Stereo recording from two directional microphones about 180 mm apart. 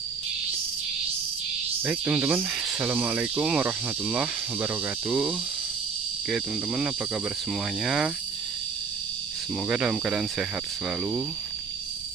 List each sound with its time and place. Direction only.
1.9 s speech: 10° right (ahead or behind)
6.3 s speech: 5° right (ahead or behind)
9.7 s speech: 5° right (ahead or behind)